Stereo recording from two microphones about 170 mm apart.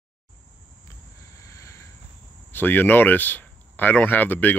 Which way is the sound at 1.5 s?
20° left (ahead or behind).